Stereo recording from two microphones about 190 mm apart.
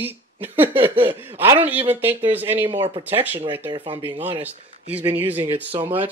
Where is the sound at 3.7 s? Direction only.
25° right (ahead or behind).